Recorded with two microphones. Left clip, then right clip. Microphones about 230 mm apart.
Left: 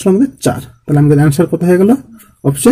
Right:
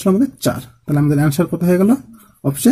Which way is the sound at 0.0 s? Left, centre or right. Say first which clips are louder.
Left 5 dB; right.